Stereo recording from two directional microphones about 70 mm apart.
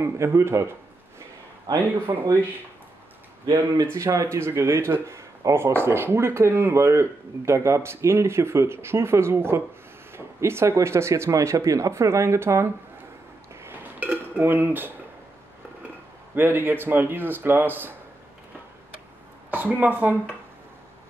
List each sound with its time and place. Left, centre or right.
0.0 s speech: right
1.7 s speech: right
3.8 s speech: right
13.6 s a sound: right
14.1 s dishes: right
16.3 s speech: right
19.5 s speech: right